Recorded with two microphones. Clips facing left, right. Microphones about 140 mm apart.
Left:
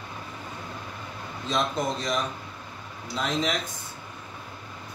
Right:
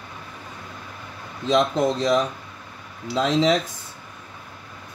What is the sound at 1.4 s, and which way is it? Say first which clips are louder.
Speech: right 8 dB; 90° right.